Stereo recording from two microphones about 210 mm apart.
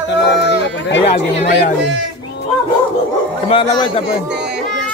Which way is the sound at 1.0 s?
30° left (ahead or behind).